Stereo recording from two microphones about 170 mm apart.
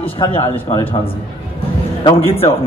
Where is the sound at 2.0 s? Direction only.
30° left (ahead or behind).